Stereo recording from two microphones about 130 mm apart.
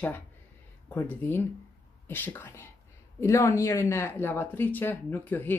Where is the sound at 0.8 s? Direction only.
15° left (ahead or behind).